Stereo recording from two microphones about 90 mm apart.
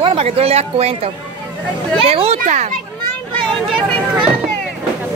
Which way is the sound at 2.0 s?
90° right.